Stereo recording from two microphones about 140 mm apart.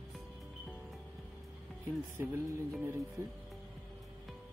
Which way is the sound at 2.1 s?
20° right (ahead or behind).